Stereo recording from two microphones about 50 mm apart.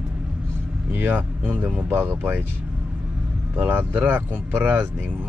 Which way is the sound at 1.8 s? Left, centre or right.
Right.